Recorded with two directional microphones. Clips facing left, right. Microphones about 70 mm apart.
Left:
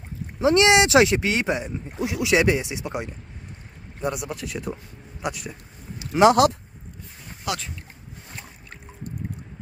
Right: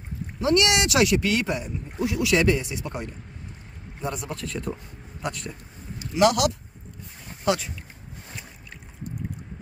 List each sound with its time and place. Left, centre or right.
0.4 s speech: left
4.0 s a man's voice: centre
5.2 s a sound: centre
6.1 s speech: left
7.4 s speech: centre